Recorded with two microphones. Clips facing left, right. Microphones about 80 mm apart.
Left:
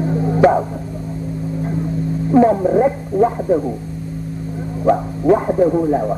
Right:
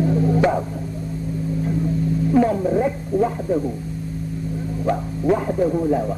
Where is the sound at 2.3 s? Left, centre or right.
Left.